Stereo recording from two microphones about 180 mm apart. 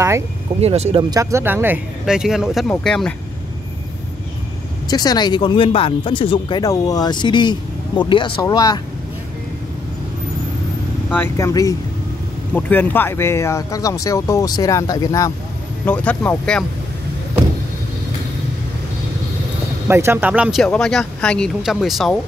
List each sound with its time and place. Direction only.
0.6 s speech: 35° right (ahead or behind)
1.1 s speech: 15° right (ahead or behind); by 3.2 s 5° left (ahead or behind)
4.8 s speech: 20° left (ahead or behind)
11.1 s speech: 15° left (ahead or behind)
15.8 s speech: 10° left (ahead or behind)
19.9 s speech: 15° right (ahead or behind)